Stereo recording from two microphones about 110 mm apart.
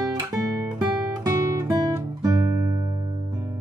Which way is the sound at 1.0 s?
30° right (ahead or behind).